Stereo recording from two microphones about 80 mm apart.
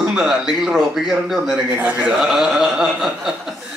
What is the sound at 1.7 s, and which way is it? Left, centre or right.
Speech, right.